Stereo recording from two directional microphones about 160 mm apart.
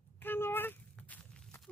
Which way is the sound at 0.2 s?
15° left (ahead or behind).